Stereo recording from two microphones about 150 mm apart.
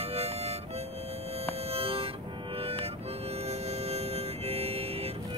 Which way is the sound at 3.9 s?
45° right (ahead or behind).